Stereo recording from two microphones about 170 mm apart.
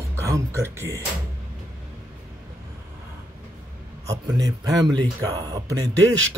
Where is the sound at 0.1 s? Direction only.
15° right (ahead or behind).